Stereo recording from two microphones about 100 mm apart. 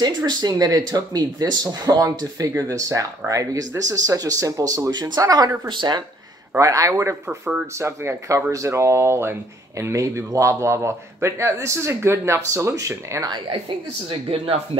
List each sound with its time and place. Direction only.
0.0 s speech: 45° right (ahead or behind)
6.6 s speech: 30° right (ahead or behind)
7.2 s speech: 5° right (ahead or behind)
7.7 s speech: 25° right (ahead or behind)
14.0 s speech: 65° right (ahead or behind)